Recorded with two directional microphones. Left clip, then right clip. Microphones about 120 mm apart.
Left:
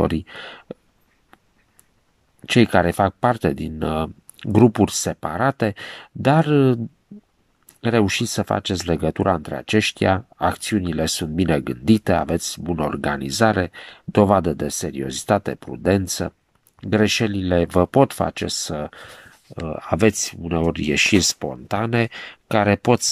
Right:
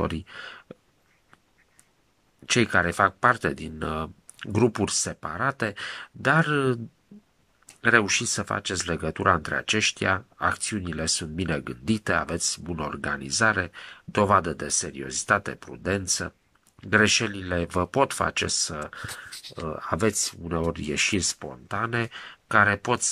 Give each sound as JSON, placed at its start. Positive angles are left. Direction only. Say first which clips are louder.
{"t": 0.0, "sound": "speech", "louder": "left 8 dB", "side_deg": 25}
{"t": 2.4, "sound": "speech", "louder": "left 5 dB", "side_deg": 25}
{"t": 7.8, "sound": "speech", "louder": "left 1 dB", "side_deg": 25}